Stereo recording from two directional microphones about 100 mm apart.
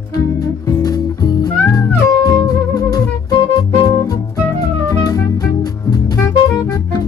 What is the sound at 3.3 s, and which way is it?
Music, 55° left (ahead or behind).